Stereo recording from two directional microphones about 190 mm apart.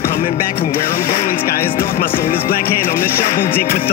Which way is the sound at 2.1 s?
50° left (ahead or behind).